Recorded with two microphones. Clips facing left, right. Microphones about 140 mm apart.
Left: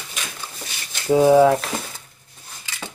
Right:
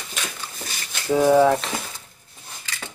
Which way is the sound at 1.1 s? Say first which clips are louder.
Left 3 dB; 15° left (ahead or behind).